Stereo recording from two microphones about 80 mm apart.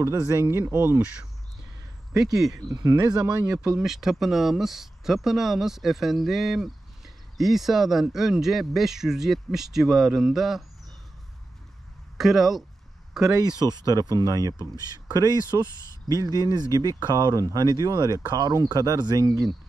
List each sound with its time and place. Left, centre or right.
0.0 s speech: right
2.3 s speech: centre
2.7 s speech: right
3.5 s speech: centre
12.2 s speech: centre
13.4 s speech: right